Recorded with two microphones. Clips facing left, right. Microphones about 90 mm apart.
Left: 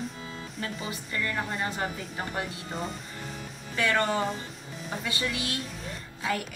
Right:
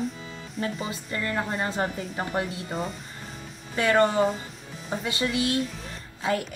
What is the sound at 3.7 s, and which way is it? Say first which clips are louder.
Speech: right 6 dB; 30° right (ahead or behind).